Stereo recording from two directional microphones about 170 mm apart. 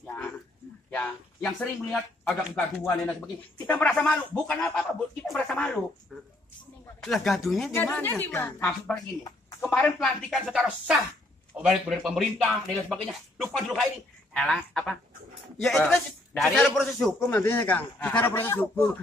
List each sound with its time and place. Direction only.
0.0 s a sound: 5° left (ahead or behind)
0.8 s speech: 10° left (ahead or behind)
8.0 s a man's voice: 10° left (ahead or behind)
17.3 s a man's voice: 10° left (ahead or behind)